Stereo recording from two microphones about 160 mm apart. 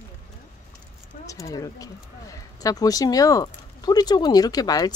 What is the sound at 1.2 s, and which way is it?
Speech, 20° left (ahead or behind).